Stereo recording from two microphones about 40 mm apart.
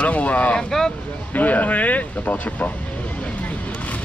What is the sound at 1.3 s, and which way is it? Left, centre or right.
Speech, left.